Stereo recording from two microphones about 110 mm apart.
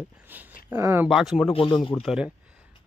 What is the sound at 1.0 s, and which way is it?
Speech, 5° right (ahead or behind).